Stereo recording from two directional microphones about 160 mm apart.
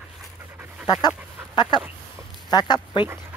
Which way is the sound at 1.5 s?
30° left (ahead or behind).